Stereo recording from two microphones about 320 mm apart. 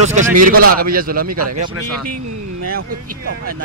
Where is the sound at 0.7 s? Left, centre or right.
Right.